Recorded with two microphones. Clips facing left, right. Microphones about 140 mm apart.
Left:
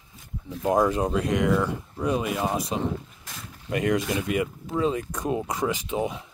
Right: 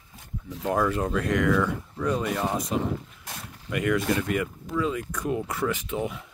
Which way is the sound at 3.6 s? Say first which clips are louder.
Even; 25° left (ahead or behind).